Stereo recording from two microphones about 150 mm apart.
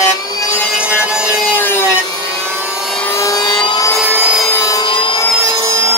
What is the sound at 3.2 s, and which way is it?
Vehicle, 25° left (ahead or behind).